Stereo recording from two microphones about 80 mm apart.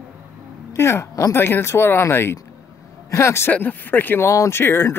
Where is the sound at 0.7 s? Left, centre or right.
Left.